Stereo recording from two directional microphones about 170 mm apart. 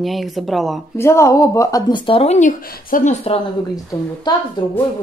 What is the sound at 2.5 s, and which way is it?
Speech, 55° left (ahead or behind).